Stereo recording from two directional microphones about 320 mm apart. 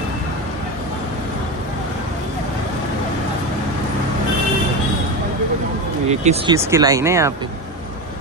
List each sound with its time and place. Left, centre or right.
6.0 s speech: centre
6.5 s speech: centre